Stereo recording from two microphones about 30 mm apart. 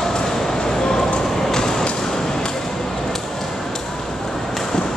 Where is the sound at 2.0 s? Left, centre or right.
Centre.